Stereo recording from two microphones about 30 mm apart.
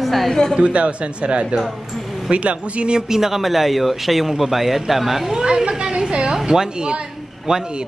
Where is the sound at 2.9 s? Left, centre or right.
Centre.